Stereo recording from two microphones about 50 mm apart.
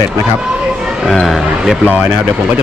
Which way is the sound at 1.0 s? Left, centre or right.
Centre.